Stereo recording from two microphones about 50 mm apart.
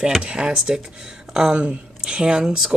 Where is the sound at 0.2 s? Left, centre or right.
Centre.